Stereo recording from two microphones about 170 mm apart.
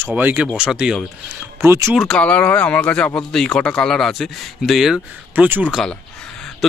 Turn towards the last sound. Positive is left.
turn(degrees=0)  # may be behind; listen again after turning